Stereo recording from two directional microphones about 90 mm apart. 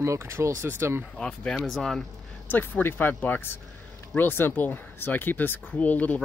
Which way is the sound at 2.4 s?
20° left (ahead or behind).